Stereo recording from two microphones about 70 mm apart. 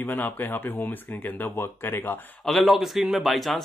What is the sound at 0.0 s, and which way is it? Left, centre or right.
Speech, left.